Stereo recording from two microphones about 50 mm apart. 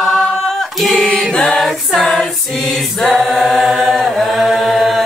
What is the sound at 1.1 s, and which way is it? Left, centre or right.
Mantra, centre.